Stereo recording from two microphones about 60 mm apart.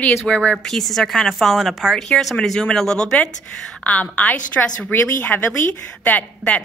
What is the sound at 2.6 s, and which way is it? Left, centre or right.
Speech, centre.